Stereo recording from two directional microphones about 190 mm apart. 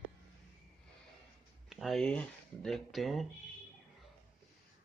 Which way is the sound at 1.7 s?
Centre (ahead or behind).